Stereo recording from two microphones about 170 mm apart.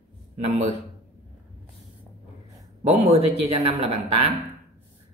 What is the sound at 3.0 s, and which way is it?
Speech, 35° right (ahead or behind).